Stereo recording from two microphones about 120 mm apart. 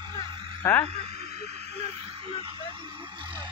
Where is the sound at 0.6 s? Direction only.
25° left (ahead or behind).